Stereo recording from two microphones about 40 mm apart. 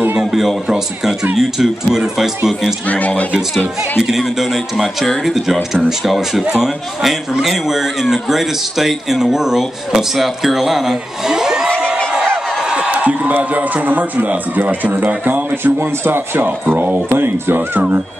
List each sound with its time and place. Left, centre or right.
0.0 s a sound: right
0.3 s a man's voice: centre
2.9 s speech: left
4.2 s speech: centre
6.4 s speech: centre
12.6 s a sound: right
12.9 s speech: right
15.6 s speech: right
16.7 s speech: right
17.1 s speech: right
17.6 s speech: right